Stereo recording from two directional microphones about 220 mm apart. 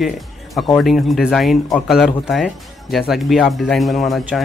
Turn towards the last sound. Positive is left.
turn(degrees=0)  # may be behind; listen again after turning